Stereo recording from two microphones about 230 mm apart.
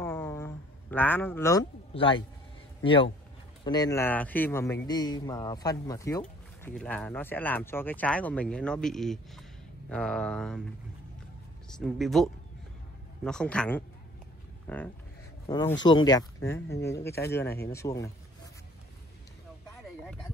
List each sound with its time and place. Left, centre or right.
0.0 s a sound: centre
2.8 s a man's voice: left; by 10.6 s centre
11.8 s speech: centre